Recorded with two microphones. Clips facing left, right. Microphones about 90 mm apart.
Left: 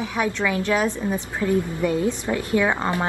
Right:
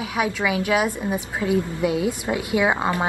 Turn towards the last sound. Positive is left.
turn(degrees=-15)  # may be behind; listen again after turning